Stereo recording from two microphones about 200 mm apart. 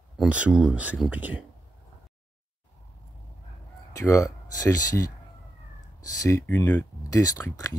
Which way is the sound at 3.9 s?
15° left (ahead or behind).